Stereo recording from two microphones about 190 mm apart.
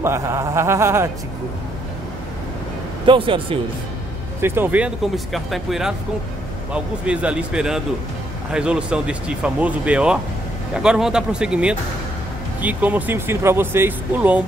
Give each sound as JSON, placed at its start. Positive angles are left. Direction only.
{"t": 0.0, "sound": "speech", "side_deg": -15}
{"t": 3.1, "sound": "speech", "side_deg": -25}
{"t": 4.4, "sound": "speech", "side_deg": -10}